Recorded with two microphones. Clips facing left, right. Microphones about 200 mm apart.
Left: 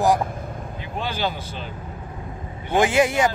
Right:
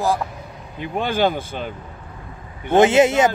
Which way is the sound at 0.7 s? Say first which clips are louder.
Right 8 dB; 55° right (ahead or behind).